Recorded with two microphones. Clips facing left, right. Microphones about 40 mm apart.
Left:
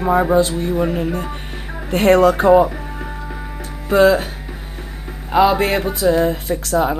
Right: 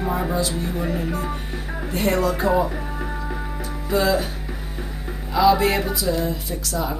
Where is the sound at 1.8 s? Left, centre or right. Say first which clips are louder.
Left 9 dB; left.